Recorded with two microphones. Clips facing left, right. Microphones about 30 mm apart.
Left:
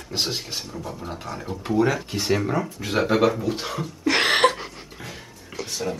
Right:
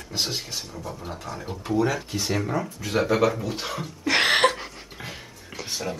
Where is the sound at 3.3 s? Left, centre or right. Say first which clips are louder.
Left 3 dB; centre.